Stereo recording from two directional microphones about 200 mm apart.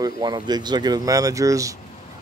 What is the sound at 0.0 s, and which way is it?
Speech, 20° right (ahead or behind).